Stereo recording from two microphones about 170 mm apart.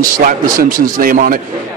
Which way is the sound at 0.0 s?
55° right (ahead or behind).